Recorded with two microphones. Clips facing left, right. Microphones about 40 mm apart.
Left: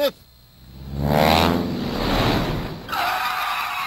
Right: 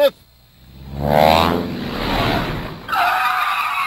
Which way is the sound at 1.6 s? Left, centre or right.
Right.